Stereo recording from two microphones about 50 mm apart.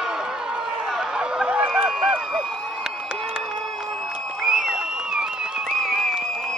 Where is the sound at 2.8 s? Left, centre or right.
Centre.